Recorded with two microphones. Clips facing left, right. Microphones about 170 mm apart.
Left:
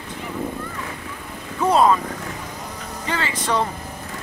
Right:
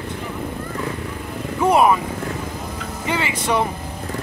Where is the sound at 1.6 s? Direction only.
15° right (ahead or behind).